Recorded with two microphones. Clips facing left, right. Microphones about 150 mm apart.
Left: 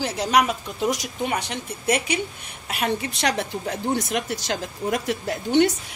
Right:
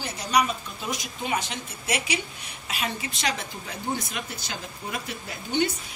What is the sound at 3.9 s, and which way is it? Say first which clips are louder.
Speech: left 8 dB; 85° left.